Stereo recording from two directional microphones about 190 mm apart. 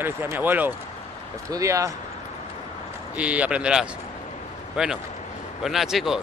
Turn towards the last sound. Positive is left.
turn(degrees=0)  # may be behind; listen again after turning